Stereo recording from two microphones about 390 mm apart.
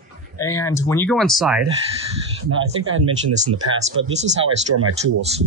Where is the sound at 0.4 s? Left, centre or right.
Centre.